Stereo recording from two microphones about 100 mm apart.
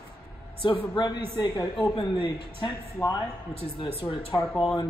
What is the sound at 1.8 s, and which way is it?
Speech, 55° left (ahead or behind).